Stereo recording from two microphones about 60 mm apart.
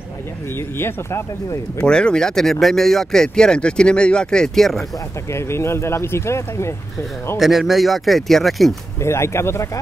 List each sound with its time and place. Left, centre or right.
0.6 s speech: left
1.8 s speech: centre
5.3 s speech: left
7.3 s speech: centre
9.0 s speech: left